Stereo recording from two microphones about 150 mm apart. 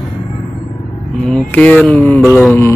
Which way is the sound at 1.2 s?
10° left (ahead or behind).